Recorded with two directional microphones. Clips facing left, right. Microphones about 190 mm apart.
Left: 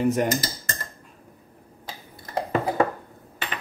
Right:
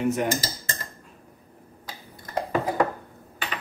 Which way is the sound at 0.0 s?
40° left (ahead or behind).